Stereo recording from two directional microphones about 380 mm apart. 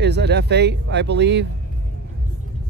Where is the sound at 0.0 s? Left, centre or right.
Right.